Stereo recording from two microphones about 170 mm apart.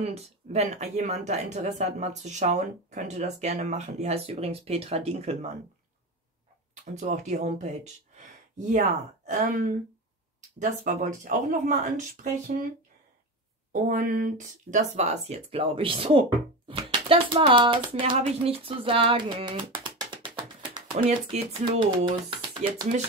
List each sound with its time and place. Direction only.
0.0 s speech: 40° right (ahead or behind)
7.0 s speech: 45° right (ahead or behind)
13.7 s speech: 50° right (ahead or behind); by 22.8 s 30° right (ahead or behind)